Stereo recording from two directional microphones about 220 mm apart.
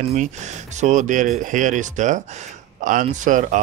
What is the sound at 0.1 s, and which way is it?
Speech, 30° right (ahead or behind).